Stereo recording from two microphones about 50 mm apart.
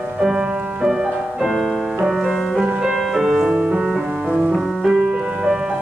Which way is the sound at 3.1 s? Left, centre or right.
Centre.